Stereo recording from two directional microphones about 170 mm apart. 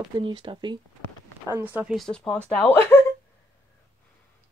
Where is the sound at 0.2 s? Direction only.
30° right (ahead or behind).